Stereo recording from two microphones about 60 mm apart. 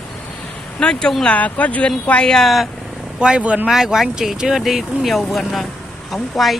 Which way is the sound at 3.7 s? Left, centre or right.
Centre.